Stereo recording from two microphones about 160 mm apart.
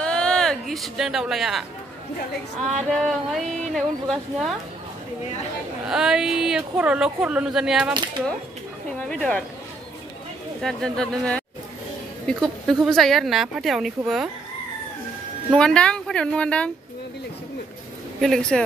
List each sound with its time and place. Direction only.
0.0 s a sound: 5° left (ahead or behind)
2.6 s a woman's voice: centre (ahead or behind)
5.9 s a woman's voice: 5° right (ahead or behind)
9.1 s a woman's voice: 5° left (ahead or behind)
10.6 s a woman's voice: 5° left (ahead or behind)
15.5 s speech: 5° left (ahead or behind)
18.2 s a woman's voice: 5° left (ahead or behind)